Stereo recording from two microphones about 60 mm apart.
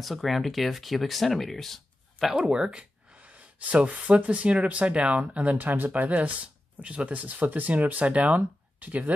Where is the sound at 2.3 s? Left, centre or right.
Centre.